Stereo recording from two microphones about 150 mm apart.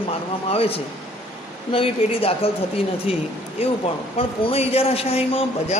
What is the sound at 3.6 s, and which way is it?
A man's voice, 40° left (ahead or behind).